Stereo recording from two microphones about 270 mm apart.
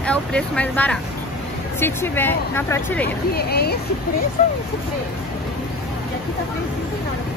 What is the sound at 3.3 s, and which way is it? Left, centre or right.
Speech, left.